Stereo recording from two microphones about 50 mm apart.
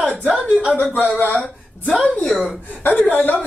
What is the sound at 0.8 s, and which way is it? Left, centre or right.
Speech, left.